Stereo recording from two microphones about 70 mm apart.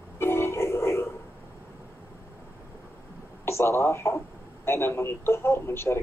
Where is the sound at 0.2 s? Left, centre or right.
Left.